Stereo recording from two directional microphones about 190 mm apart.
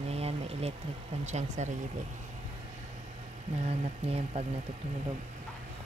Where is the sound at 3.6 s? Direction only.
35° right (ahead or behind).